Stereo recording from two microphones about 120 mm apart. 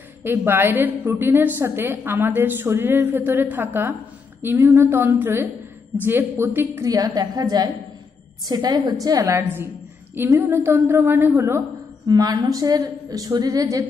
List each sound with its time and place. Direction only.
0.2 s a woman's voice: 20° right (ahead or behind)
12.1 s a woman's voice: 30° right (ahead or behind)